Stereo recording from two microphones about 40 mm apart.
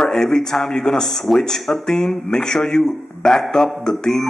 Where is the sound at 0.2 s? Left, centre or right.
Centre.